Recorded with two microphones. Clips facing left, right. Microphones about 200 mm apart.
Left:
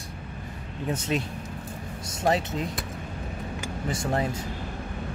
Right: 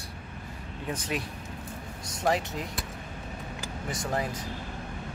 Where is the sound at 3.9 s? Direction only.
25° left (ahead or behind).